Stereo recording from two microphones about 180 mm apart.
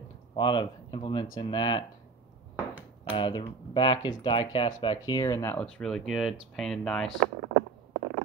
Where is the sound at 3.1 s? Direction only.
30° left (ahead or behind); by 7.1 s 5° left (ahead or behind).